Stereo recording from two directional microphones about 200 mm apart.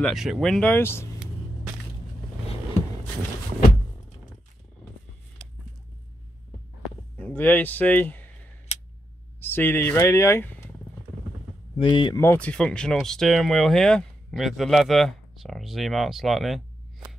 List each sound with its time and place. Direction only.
0.0 s speech: centre (ahead or behind)
6.8 s a sound: 5° left (ahead or behind)
9.4 s speech: 10° left (ahead or behind)
11.8 s speech: 25° left (ahead or behind)
12.2 s speech: 10° left (ahead or behind)